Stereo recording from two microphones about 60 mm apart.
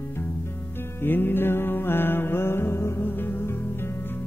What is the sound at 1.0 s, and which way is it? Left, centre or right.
Music, left.